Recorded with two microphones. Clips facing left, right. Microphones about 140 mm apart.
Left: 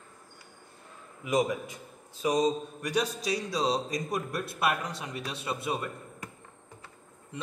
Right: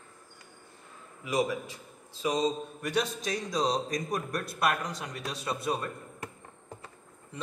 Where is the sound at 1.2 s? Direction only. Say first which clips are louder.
Left 2 dB; 20° left (ahead or behind).